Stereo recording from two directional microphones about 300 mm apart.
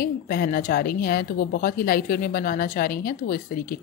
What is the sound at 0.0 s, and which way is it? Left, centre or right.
A woman's voice, left.